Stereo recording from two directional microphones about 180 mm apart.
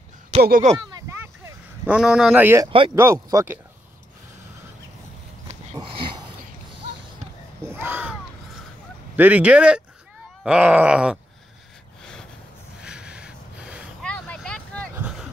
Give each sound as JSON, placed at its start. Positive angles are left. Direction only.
{"t": 0.4, "sound": "speech", "side_deg": -55}
{"t": 0.7, "sound": "speech", "side_deg": -25}
{"t": 1.0, "sound": "a sound", "side_deg": -15}
{"t": 3.0, "sound": "speech", "side_deg": -15}
{"t": 5.8, "sound": "a sound", "side_deg": -30}
{"t": 7.8, "sound": "a sound", "side_deg": -10}
{"t": 9.1, "sound": "speech", "side_deg": -10}
{"t": 10.4, "sound": "a sound", "side_deg": -5}
{"t": 12.0, "sound": "snort", "side_deg": 5}
{"t": 12.8, "sound": "gasp", "side_deg": -5}
{"t": 14.0, "sound": "vehicle", "side_deg": 5}
{"t": 15.0, "sound": "vehicle", "side_deg": -5}